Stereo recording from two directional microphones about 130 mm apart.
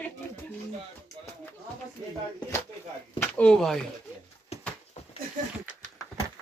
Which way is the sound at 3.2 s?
10° left (ahead or behind).